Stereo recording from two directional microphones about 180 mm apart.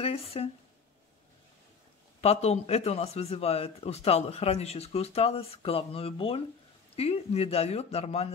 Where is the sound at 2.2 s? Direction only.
35° left (ahead or behind).